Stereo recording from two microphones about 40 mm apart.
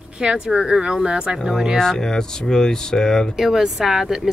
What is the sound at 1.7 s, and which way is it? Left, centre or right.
Speech, centre.